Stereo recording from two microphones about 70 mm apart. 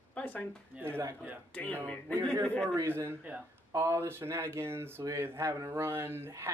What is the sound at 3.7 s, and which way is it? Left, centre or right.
Speech, right.